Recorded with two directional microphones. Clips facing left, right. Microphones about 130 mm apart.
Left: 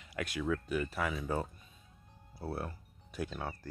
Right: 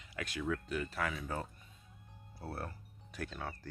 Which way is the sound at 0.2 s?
15° left (ahead or behind).